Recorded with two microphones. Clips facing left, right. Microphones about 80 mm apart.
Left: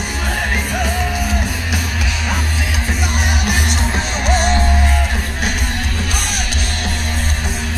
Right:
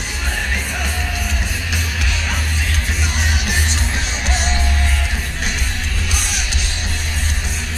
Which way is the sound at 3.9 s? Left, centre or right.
Left.